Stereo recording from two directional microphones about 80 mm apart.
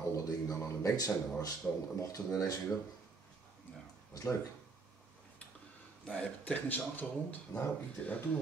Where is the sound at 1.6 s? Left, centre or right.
Centre.